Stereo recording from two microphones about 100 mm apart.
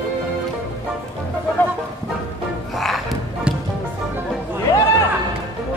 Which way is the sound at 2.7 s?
Centre (ahead or behind).